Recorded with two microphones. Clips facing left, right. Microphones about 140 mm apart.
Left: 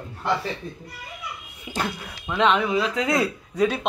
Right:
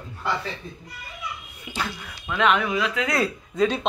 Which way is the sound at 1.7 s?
30° left (ahead or behind).